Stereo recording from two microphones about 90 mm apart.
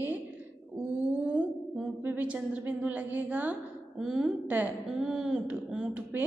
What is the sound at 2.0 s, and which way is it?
A woman's voice, 20° right (ahead or behind).